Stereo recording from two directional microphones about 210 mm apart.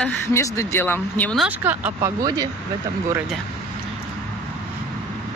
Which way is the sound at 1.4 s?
10° right (ahead or behind).